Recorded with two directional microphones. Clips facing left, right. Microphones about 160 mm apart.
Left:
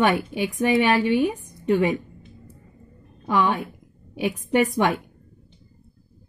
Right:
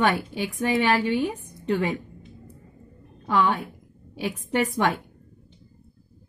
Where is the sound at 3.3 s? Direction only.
15° left (ahead or behind).